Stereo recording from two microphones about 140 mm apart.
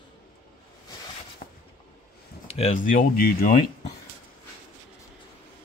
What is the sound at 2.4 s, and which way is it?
Speech, 45° left (ahead or behind).